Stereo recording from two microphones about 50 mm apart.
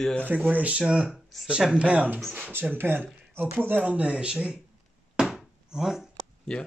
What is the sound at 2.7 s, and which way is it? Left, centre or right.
A man's voice, right.